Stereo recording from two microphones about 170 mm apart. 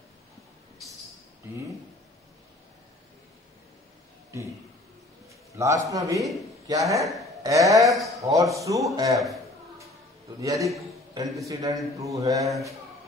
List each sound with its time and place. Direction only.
5.5 s a man's voice: 20° right (ahead or behind)
7.0 s speech: centre (ahead or behind)
7.4 s a man's voice: 20° right (ahead or behind)
10.4 s a man's voice: 20° right (ahead or behind)